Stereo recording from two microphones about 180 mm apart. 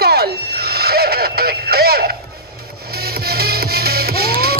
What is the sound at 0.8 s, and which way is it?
Radio, 60° right (ahead or behind).